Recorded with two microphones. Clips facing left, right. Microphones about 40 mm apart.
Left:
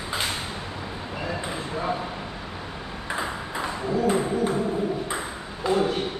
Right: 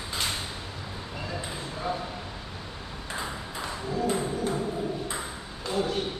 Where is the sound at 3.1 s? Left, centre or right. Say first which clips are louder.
Left 6 dB; left.